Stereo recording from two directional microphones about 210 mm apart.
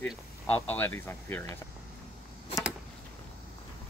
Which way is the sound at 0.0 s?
5° left (ahead or behind).